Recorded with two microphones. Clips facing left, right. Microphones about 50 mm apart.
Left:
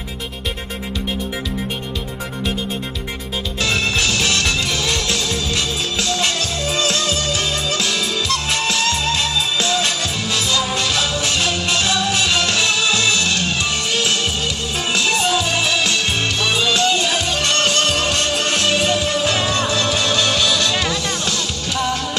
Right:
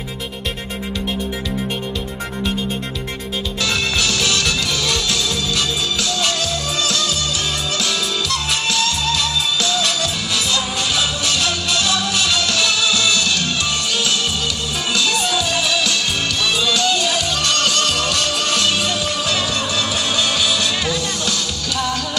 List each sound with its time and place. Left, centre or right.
3.6 s music: left
10.7 s music: left
11.1 s music: left
20.2 s music: left
20.7 s music: left